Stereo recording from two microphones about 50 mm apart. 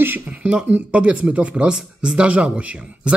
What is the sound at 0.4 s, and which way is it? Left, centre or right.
Speech, right.